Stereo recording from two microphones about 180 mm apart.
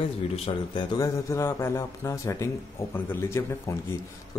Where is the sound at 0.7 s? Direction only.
20° left (ahead or behind).